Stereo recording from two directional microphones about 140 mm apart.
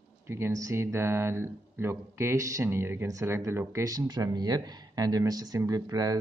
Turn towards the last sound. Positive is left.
turn(degrees=-25)  # may be behind; listen again after turning